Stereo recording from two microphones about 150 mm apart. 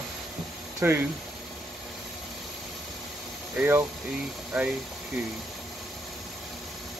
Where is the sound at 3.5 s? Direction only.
15° right (ahead or behind).